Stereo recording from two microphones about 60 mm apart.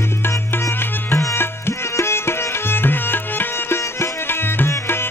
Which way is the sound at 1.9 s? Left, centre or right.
Left.